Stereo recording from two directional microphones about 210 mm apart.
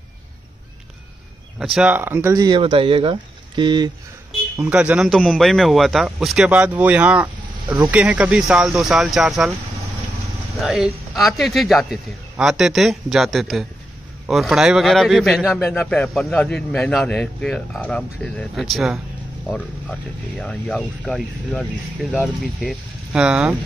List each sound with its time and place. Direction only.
1.6 s speech: centre (ahead or behind); by 3.9 s 20° right (ahead or behind)
4.6 s a man's voice: 5° right (ahead or behind)
10.6 s a man's voice: centre (ahead or behind)